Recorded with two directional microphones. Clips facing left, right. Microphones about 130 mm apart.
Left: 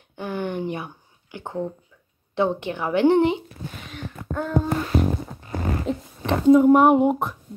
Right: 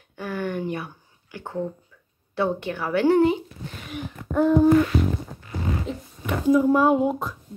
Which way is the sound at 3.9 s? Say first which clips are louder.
Right 4 dB; 10° right (ahead or behind).